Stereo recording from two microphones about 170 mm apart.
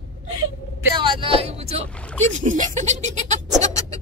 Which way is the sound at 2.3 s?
45° right (ahead or behind).